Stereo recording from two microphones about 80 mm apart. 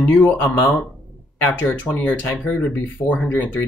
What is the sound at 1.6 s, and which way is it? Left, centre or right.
Speech, left.